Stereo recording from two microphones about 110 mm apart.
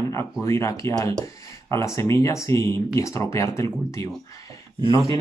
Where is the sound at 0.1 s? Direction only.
30° left (ahead or behind).